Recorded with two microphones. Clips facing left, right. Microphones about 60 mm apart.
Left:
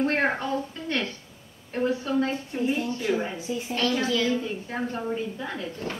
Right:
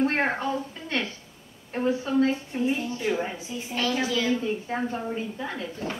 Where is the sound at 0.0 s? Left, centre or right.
Centre.